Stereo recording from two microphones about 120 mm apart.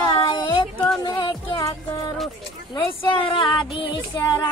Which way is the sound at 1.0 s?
40° left (ahead or behind).